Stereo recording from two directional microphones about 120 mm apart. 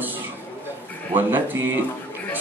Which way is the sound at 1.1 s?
15° right (ahead or behind).